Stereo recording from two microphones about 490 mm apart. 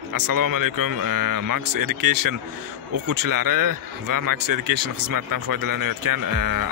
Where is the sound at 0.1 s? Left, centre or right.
Right.